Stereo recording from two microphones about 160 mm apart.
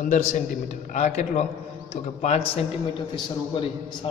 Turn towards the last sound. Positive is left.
turn(degrees=30)  # may be behind; listen again after turning